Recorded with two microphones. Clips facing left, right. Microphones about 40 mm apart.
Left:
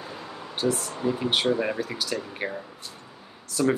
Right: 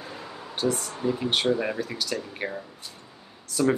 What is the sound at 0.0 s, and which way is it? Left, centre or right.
Speech, centre.